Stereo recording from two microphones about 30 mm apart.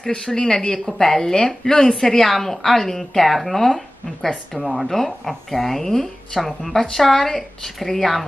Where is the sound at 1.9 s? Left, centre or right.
Centre.